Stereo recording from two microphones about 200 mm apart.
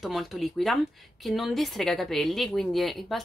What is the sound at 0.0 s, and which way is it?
A woman's voice, centre (ahead or behind).